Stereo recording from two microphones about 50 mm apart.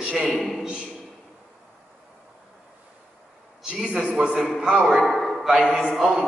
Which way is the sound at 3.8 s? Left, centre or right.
Centre.